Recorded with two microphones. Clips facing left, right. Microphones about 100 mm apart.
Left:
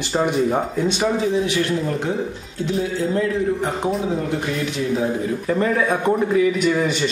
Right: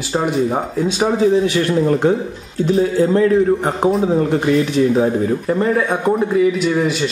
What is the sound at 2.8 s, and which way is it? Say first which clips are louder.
A man's voice: right 7 dB; 45° right (ahead or behind).